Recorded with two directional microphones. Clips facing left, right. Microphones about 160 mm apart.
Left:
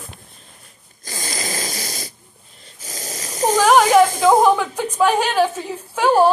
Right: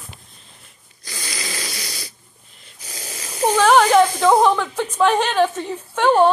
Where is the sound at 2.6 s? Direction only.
40° left (ahead or behind).